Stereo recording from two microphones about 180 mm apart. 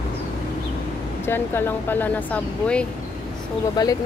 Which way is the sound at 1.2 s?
10° left (ahead or behind).